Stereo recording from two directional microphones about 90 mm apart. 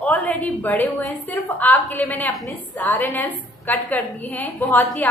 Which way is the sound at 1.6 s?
20° left (ahead or behind).